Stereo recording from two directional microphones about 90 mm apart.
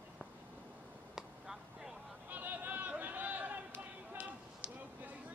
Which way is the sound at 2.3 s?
20° right (ahead or behind).